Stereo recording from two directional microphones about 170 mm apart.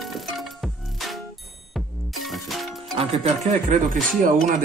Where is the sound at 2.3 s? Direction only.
Centre (ahead or behind).